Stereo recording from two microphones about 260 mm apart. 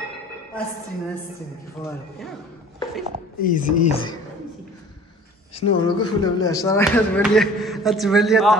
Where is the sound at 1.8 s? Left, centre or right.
Centre.